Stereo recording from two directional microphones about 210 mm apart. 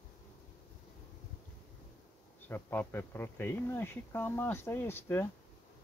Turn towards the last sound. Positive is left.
turn(degrees=10)  # may be behind; listen again after turning